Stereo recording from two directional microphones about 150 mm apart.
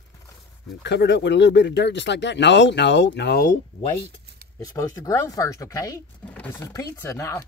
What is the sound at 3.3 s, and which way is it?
Speech, 70° left (ahead or behind).